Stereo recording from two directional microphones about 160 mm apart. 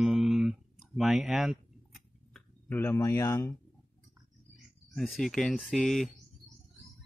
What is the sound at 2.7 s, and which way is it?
Speech, 15° left (ahead or behind).